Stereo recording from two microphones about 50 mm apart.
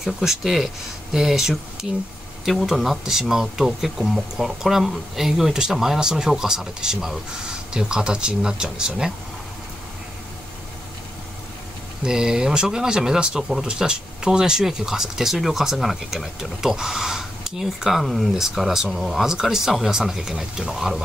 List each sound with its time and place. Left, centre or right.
0.0 s speech: centre
12.0 s speech: centre